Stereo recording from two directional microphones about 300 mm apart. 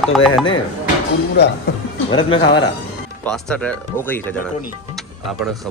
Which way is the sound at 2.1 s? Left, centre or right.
Centre.